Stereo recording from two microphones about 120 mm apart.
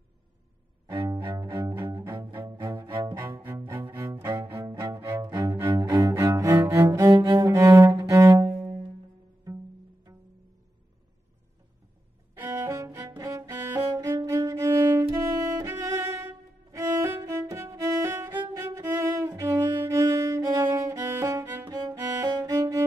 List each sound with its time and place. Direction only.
0.8 s cello: 30° right (ahead or behind)
10.1 s music: 25° right (ahead or behind)
12.4 s violin: 25° right (ahead or behind)
13.2 s music: 25° right (ahead or behind)
18.3 s music: 35° right (ahead or behind)